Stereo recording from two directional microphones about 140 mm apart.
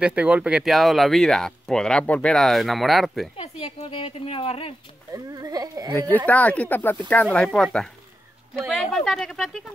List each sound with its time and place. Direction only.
0.0 s speech: 10° right (ahead or behind)
3.3 s a woman's voice: 45° left (ahead or behind)
5.1 s speech: 25° right (ahead or behind)
5.9 s speech: 15° left (ahead or behind)